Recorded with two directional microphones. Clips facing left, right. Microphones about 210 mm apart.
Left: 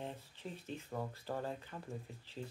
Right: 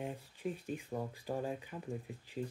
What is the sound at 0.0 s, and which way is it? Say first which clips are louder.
Speech: right 6 dB; 10° right (ahead or behind).